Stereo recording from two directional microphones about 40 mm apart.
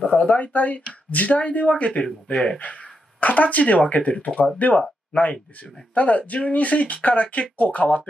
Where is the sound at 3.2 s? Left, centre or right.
Left.